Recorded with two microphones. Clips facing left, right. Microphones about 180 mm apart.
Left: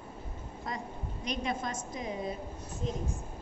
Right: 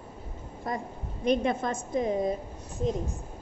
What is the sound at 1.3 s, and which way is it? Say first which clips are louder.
A woman's voice: right 9 dB; 55° right (ahead or behind).